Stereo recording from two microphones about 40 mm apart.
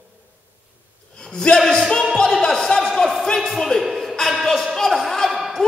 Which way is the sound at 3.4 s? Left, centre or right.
Centre.